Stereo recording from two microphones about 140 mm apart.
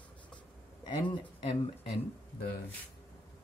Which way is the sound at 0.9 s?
35° left (ahead or behind).